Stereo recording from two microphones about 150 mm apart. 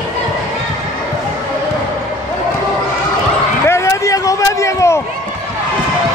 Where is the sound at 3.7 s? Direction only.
20° left (ahead or behind).